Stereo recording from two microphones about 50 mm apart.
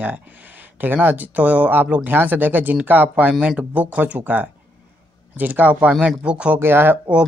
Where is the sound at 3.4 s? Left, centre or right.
Right.